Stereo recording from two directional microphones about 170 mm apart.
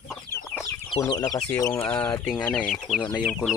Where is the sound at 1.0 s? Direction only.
20° left (ahead or behind); by 3.0 s 5° left (ahead or behind).